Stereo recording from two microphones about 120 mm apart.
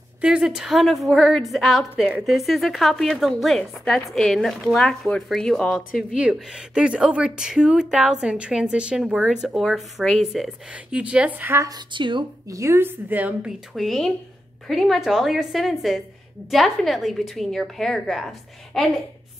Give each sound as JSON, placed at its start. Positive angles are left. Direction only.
{"t": 0.2, "sound": "speech", "side_deg": -5}
{"t": 11.9, "sound": "speech", "side_deg": -40}
{"t": 12.4, "sound": "a woman's voice", "side_deg": -25}